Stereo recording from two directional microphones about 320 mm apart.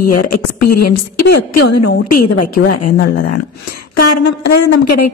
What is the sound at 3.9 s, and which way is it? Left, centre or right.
Speech, left.